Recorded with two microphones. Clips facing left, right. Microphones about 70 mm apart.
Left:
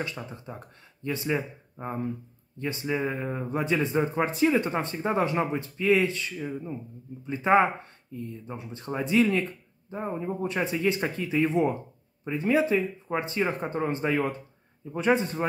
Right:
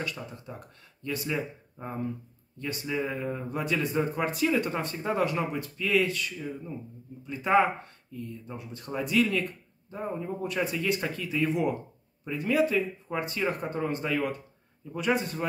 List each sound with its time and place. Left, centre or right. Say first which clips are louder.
0.0 s speech: left 2 dB; left